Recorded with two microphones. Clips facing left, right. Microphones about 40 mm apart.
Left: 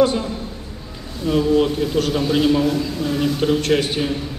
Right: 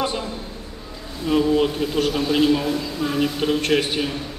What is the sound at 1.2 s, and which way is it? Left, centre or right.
Speech, centre.